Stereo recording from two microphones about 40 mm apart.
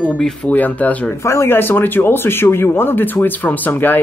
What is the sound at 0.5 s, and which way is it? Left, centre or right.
Speech, left.